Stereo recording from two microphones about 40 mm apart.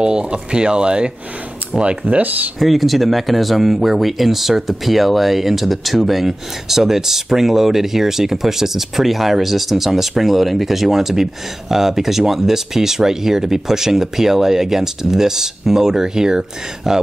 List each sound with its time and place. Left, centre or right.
0.0 s speech: right
2.6 s speech: centre